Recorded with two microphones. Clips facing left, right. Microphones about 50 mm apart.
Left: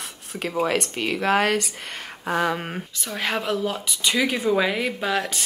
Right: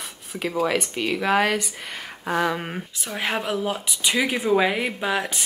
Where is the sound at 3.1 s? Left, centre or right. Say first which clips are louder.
Even; centre.